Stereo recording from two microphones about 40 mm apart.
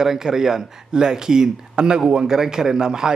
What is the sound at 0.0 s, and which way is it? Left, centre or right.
Speech, centre.